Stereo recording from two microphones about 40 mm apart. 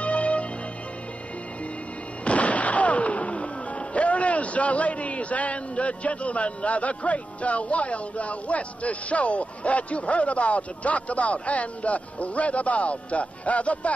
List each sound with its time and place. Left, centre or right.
0.0 s music: left
2.2 s music: left
3.9 s speech: left